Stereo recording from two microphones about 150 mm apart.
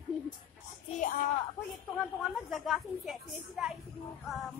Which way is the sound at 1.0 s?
65° left (ahead or behind).